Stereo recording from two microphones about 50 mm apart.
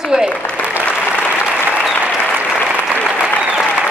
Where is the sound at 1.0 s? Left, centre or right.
Left.